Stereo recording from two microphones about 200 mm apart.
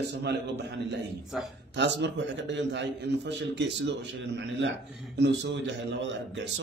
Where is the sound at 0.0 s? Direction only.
55° right (ahead or behind).